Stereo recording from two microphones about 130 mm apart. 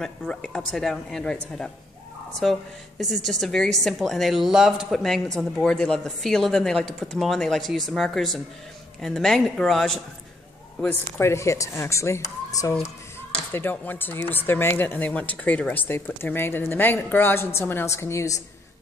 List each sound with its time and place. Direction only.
0.0 s a woman's voice: 5° left (ahead or behind)
10.8 s speech: 15° left (ahead or behind)